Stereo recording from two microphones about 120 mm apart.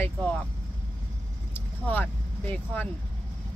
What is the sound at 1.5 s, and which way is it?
Speech, 15° left (ahead or behind).